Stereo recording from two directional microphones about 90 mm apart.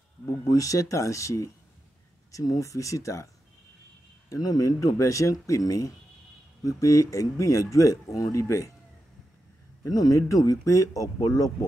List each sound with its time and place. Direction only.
0.5 s speech: 40° left (ahead or behind)
4.3 s speech: 40° left (ahead or behind)
9.8 s speech: 40° left (ahead or behind)